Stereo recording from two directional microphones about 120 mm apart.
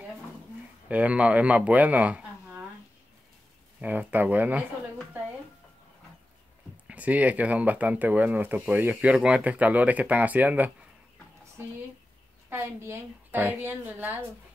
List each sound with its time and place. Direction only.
0.8 s speech: 10° right (ahead or behind)
3.8 s speech: 15° right (ahead or behind)
6.9 s speech: 10° right (ahead or behind)
12.4 s a woman's voice: 20° right (ahead or behind)